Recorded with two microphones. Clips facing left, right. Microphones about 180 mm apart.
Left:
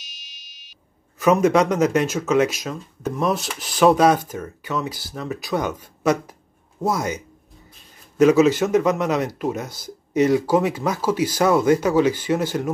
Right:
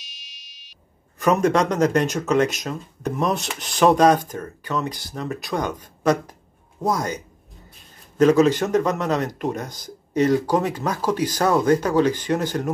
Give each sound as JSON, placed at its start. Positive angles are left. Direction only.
{"t": 0.0, "sound": "music", "side_deg": 0}
{"t": 1.2, "sound": "speech", "side_deg": 10}